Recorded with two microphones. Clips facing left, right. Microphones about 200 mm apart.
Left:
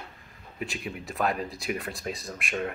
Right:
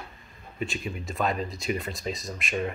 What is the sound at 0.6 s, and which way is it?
Speech, 10° left (ahead or behind).